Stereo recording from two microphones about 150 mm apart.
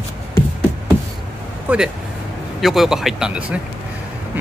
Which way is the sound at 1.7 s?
10° right (ahead or behind).